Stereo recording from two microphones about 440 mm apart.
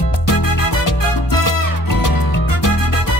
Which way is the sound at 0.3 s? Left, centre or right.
Left.